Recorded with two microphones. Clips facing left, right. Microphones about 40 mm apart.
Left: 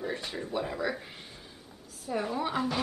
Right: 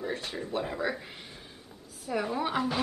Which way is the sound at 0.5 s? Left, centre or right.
Centre.